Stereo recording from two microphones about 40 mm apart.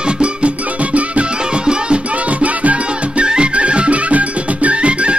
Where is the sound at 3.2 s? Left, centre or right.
Right.